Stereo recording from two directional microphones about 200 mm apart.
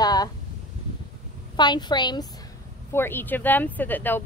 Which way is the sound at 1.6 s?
20° left (ahead or behind).